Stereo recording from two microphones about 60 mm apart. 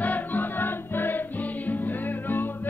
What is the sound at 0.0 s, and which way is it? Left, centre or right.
Music, left.